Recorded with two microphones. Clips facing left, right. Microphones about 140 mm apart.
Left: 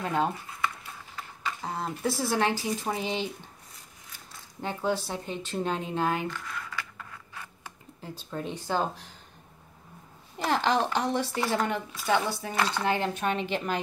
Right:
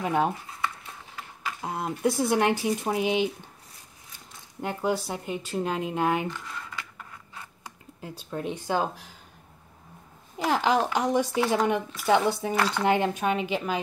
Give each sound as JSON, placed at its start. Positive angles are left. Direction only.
{"t": 0.0, "sound": "speech", "side_deg": -15}
{"t": 1.1, "sound": "a sound", "side_deg": -10}
{"t": 1.7, "sound": "speech", "side_deg": -20}
{"t": 4.6, "sound": "speech", "side_deg": -10}
{"t": 6.5, "sound": "scratch", "side_deg": -20}
{"t": 8.2, "sound": "speech", "side_deg": -10}
{"t": 10.3, "sound": "speech", "side_deg": -5}
{"t": 12.4, "sound": "speech", "side_deg": -10}